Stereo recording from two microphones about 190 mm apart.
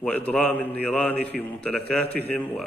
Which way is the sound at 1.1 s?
60° right (ahead or behind).